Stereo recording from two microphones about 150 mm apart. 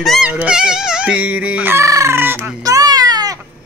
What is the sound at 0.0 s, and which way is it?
Speech, centre (ahead or behind).